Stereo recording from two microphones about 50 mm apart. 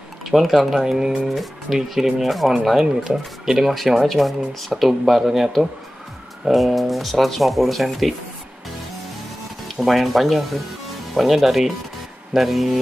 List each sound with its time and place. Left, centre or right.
0.2 s speech: centre
9.8 s speech: centre